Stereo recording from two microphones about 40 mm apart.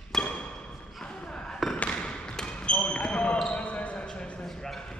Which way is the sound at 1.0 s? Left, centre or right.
Left.